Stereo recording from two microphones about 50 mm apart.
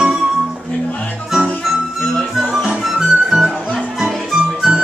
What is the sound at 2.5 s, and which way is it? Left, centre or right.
Music, centre.